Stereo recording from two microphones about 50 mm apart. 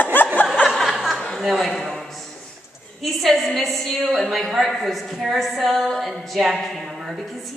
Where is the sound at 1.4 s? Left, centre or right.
Centre.